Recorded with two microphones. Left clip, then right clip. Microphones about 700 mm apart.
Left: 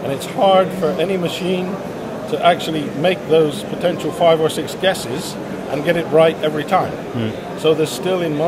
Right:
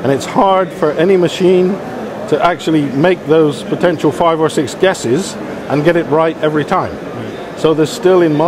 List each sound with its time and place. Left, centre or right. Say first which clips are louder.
0.5 s a man's voice: right 2 dB; right